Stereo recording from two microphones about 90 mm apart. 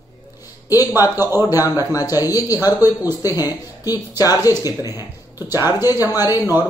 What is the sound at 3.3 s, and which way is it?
A woman's voice, 45° left (ahead or behind).